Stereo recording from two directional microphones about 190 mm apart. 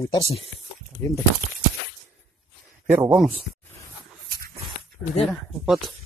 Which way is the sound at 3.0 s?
5° right (ahead or behind).